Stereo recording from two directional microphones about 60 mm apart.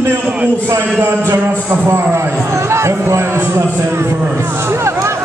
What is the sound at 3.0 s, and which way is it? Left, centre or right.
Speech, right.